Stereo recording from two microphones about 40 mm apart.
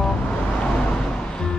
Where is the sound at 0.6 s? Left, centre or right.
Left.